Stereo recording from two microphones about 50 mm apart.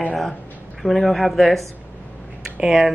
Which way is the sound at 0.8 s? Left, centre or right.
Centre.